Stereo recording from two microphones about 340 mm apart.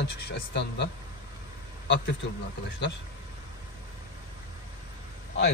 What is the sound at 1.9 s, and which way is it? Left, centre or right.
Speech, left.